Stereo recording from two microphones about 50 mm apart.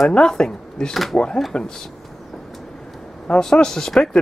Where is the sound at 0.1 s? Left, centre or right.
Centre.